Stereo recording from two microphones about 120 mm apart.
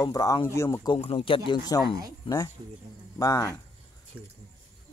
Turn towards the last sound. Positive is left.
turn(degrees=30)  # may be behind; listen again after turning